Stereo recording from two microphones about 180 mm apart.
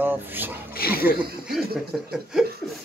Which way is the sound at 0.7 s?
55° left (ahead or behind).